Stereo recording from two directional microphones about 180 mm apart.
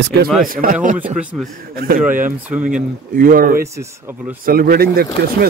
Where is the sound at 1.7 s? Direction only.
55° right (ahead or behind).